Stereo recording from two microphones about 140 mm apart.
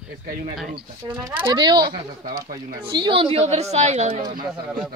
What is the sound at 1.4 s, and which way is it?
A child's voice, 30° right (ahead or behind).